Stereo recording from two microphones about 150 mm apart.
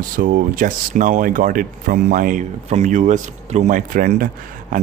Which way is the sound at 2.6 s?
50° right (ahead or behind).